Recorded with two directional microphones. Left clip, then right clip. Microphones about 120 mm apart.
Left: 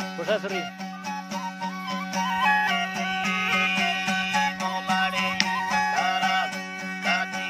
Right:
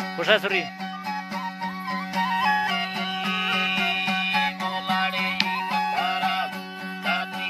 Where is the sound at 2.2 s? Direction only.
30° left (ahead or behind).